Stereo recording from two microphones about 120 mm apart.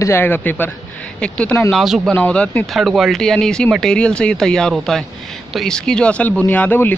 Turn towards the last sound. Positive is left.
turn(degrees=15)  # may be behind; listen again after turning